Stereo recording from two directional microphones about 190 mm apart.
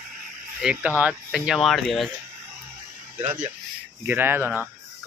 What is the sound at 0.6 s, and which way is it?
Speech, 5° right (ahead or behind).